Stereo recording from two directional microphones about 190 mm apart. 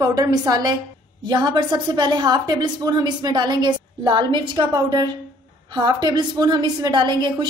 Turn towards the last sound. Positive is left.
turn(degrees=-25)  # may be behind; listen again after turning